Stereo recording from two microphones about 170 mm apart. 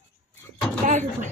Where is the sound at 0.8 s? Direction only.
50° right (ahead or behind).